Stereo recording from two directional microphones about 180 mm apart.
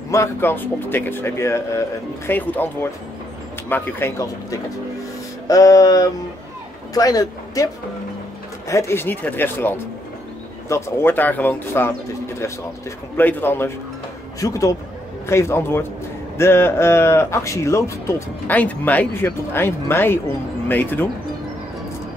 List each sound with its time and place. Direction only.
0.1 s speech: 15° left (ahead or behind)
5.5 s a sound: 20° left (ahead or behind)
6.9 s speech: 20° left (ahead or behind)
13.1 s speech: 10° left (ahead or behind)
14.4 s a sound: 20° left (ahead or behind)
15.2 s speech: 15° left (ahead or behind)